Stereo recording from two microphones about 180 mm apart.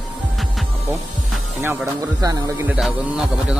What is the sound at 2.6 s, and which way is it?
Speech, centre (ahead or behind).